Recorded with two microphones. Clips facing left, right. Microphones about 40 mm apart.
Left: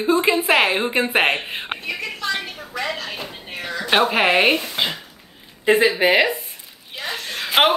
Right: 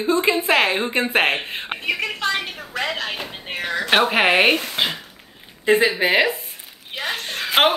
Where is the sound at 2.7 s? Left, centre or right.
Right.